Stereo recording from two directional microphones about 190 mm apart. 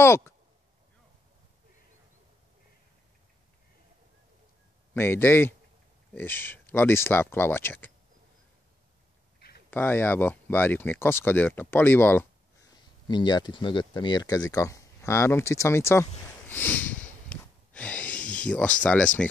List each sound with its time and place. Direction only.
0.0 s speech: 15° left (ahead or behind)
4.9 s speech: 10° left (ahead or behind)
9.7 s speech: 10° left (ahead or behind)
13.1 s speech: 25° left (ahead or behind)
16.4 s snort: 10° left (ahead or behind)
18.5 s speech: 5° left (ahead or behind)